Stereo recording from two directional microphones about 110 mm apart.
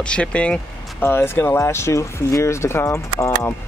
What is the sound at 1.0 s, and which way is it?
Speech, 20° left (ahead or behind).